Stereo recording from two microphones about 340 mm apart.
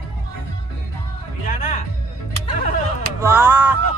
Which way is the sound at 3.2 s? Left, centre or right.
Centre.